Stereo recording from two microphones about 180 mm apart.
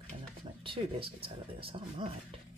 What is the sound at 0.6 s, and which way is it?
Speech, 30° right (ahead or behind).